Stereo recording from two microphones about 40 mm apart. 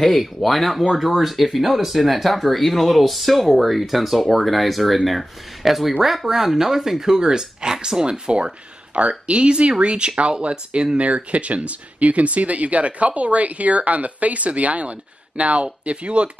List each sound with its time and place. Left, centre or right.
0.2 s speech: centre; by 16.3 s right